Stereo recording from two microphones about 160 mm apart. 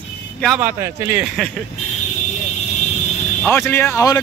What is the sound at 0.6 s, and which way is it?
Speech, 15° right (ahead or behind).